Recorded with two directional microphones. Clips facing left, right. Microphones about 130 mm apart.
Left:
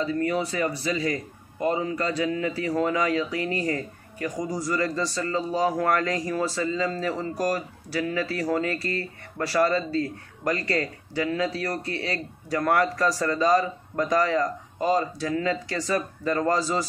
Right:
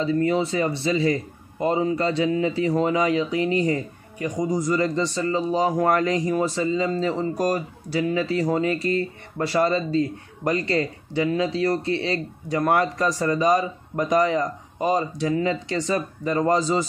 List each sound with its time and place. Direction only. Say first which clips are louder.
0.0 s a man's voice: right 4 dB; 25° right (ahead or behind)